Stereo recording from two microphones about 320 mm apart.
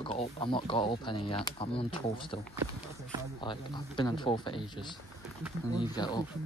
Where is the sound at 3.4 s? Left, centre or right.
Centre.